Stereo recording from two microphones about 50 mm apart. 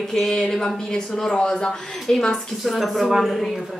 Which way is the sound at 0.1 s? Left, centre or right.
Centre.